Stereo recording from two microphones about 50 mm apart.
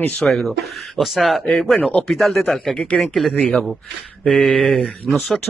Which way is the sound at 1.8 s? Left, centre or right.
Left.